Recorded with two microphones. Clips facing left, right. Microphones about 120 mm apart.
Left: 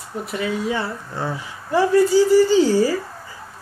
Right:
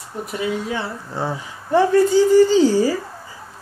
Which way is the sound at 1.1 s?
20° right (ahead or behind).